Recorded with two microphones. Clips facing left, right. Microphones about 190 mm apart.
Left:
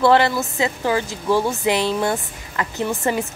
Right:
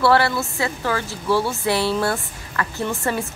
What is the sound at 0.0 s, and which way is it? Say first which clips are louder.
A woman's voice: left 2 dB; 20° left (ahead or behind).